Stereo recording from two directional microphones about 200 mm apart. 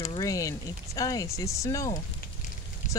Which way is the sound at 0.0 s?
15° left (ahead or behind).